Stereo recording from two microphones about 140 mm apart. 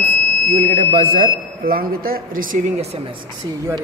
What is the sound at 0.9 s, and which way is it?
Speech, 90° right.